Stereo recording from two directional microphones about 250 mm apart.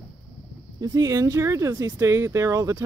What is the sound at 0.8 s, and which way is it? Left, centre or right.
Speech, centre.